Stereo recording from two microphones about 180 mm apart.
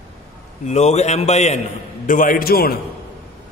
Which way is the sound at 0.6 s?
40° left (ahead or behind).